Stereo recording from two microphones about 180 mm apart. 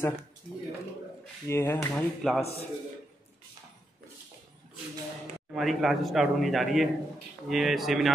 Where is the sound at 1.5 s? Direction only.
15° left (ahead or behind).